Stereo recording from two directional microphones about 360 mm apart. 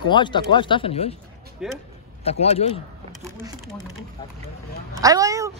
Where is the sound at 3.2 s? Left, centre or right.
Centre.